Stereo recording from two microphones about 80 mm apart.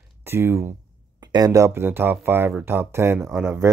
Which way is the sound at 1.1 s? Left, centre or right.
Right.